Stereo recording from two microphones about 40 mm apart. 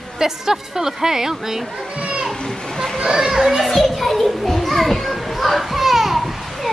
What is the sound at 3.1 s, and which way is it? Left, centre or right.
Children playing, centre.